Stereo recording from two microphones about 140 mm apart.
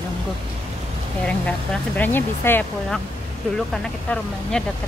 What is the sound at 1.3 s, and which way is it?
A woman's voice, 10° left (ahead or behind).